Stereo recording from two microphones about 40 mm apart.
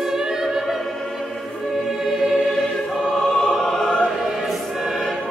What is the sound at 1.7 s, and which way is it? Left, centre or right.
Music, centre.